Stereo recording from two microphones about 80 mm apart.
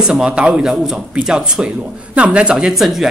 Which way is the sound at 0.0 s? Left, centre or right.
Centre.